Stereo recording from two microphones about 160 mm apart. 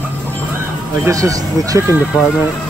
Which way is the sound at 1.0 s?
20° right (ahead or behind).